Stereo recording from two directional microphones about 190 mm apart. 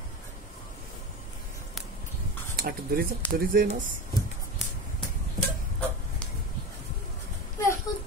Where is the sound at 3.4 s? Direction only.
50° right (ahead or behind).